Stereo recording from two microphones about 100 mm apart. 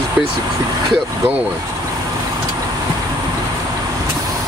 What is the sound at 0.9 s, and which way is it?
Speech, 15° right (ahead or behind).